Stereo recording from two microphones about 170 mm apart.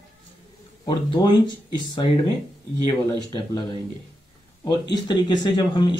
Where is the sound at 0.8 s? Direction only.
25° left (ahead or behind).